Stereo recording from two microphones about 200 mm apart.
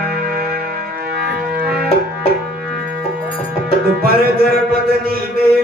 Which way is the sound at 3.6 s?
50° right (ahead or behind).